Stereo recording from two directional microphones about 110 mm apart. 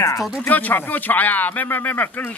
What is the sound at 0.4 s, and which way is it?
Speech, 15° left (ahead or behind).